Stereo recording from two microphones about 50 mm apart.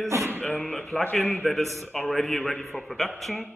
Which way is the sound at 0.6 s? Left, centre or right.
Centre.